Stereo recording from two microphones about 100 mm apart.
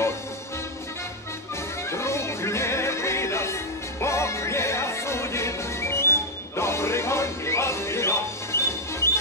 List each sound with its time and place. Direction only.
1.9 s music: 30° left (ahead or behind)